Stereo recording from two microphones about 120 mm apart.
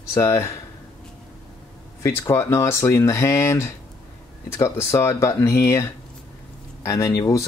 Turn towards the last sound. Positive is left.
turn(degrees=25)  # may be behind; listen again after turning